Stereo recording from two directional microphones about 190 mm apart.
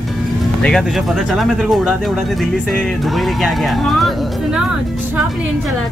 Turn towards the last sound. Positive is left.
turn(degrees=0)  # may be behind; listen again after turning